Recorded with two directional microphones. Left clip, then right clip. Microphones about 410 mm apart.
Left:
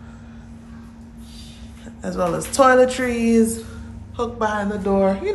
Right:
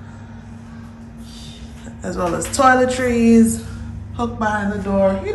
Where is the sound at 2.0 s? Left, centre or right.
Centre.